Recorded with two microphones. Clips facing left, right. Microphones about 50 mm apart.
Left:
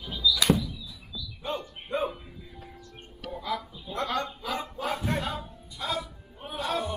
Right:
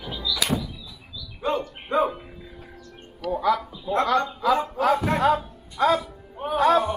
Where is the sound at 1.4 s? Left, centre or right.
Right.